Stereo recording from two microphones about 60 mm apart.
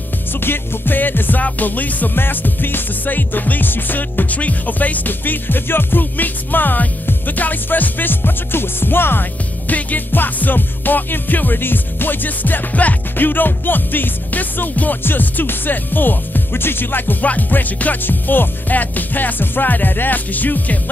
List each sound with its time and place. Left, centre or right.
0.4 s music: left
9.7 s music: left